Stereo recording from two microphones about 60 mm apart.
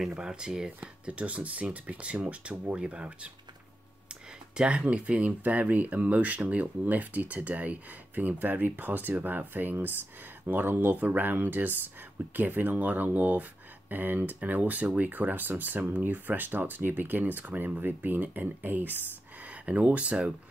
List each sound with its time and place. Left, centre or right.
0.0 s speech: centre
4.6 s speech: centre